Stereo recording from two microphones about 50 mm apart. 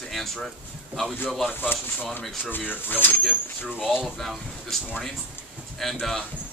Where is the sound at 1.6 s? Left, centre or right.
Left.